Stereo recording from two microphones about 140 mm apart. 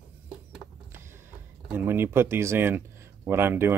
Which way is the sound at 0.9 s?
15° right (ahead or behind).